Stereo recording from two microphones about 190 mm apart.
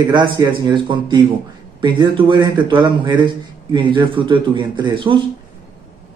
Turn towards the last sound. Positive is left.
turn(degrees=-25)  # may be behind; listen again after turning